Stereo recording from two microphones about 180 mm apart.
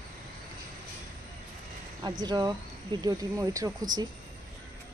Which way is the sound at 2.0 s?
25° right (ahead or behind).